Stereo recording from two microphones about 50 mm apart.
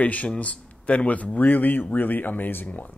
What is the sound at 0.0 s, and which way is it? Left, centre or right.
Speech, left.